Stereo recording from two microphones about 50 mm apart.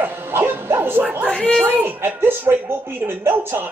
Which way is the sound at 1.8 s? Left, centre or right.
Right.